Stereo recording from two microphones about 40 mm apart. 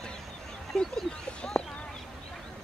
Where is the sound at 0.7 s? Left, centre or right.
Left.